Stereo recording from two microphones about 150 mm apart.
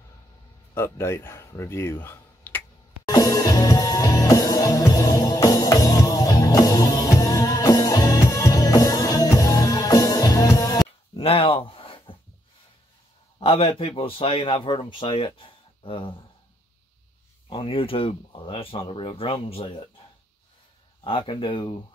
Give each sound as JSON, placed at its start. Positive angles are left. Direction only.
{"t": 0.7, "sound": "speech", "side_deg": 15}
{"t": 3.1, "sound": "music", "side_deg": 20}
{"t": 11.1, "sound": "a sound", "side_deg": 40}
{"t": 13.4, "sound": "speech", "side_deg": 40}
{"t": 17.5, "sound": "speech", "side_deg": 35}
{"t": 21.0, "sound": "speech", "side_deg": 35}